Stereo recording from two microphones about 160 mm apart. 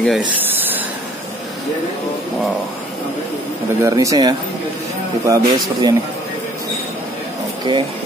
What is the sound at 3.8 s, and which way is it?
Speech, 20° right (ahead or behind).